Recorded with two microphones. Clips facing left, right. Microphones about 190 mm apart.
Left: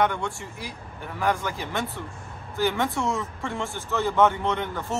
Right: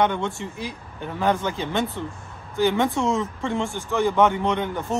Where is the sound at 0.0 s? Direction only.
20° right (ahead or behind).